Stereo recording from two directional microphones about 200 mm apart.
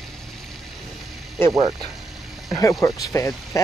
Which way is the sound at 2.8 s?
15° left (ahead or behind).